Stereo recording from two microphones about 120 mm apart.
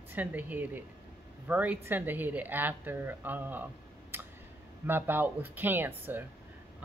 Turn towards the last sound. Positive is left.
turn(degrees=-15)  # may be behind; listen again after turning